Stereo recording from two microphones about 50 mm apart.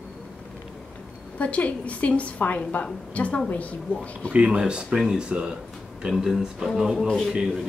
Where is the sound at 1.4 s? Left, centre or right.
Left.